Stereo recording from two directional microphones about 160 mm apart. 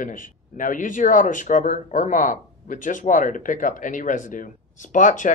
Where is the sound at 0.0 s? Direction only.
55° left (ahead or behind).